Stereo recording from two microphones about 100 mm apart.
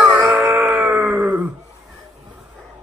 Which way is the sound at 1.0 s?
15° right (ahead or behind).